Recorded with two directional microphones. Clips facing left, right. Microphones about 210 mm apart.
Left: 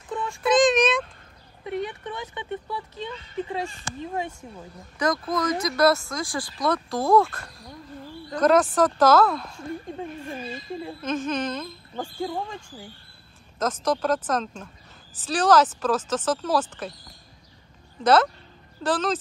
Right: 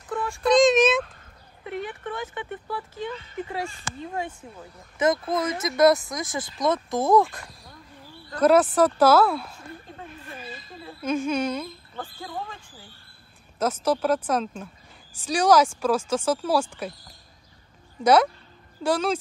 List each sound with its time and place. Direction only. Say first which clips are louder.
0.1 s a sound: right 1 dB; 20° left (ahead or behind)
0.4 s a sound: right 2 dB; centre (ahead or behind)
1.7 s a woman's voice: left 2 dB; 20° left (ahead or behind)
4.9 s speech: right 2 dB; 25° right (ahead or behind); by 9.6 s 10° right (ahead or behind)
11.0 s speech: right 3 dB; 10° right (ahead or behind)
12.0 s speech: left 6 dB; 15° left (ahead or behind)
13.6 s speech: right 1 dB; 10° right (ahead or behind)
18.0 s speech: right 1 dB; 10° right (ahead or behind)